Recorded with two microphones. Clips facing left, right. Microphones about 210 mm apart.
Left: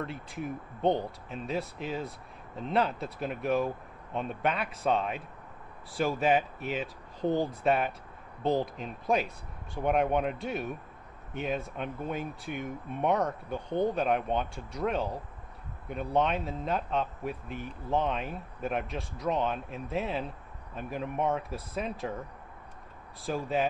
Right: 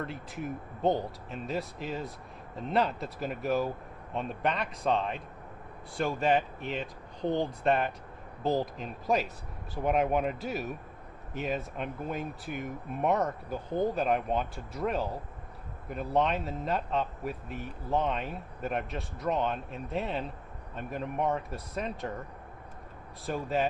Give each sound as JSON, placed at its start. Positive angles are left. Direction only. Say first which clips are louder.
{"t": 0.0, "sound": "speech", "louder": "even", "side_deg": 0}
{"t": 23.2, "sound": "speech", "louder": "even", "side_deg": 0}